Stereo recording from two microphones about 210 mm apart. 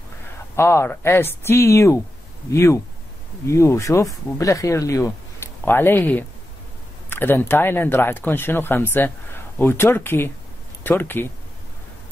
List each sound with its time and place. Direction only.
0.6 s speech: 10° left (ahead or behind)